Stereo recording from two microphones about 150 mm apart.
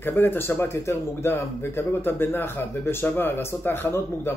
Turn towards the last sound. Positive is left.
turn(degrees=15)  # may be behind; listen again after turning